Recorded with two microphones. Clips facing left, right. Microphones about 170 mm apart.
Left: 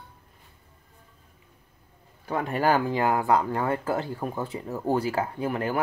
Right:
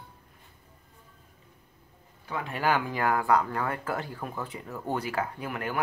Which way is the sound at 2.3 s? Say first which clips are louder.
Left 4 dB; 45° left (ahead or behind).